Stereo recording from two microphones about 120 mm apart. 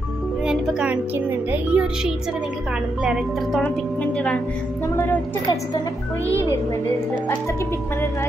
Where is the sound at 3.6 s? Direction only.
10° left (ahead or behind).